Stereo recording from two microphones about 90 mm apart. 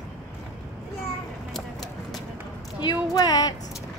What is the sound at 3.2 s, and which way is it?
Speech, 45° left (ahead or behind).